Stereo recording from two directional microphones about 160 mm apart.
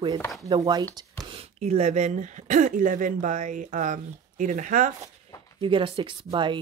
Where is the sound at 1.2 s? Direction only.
40° right (ahead or behind); by 4.9 s 55° right (ahead or behind).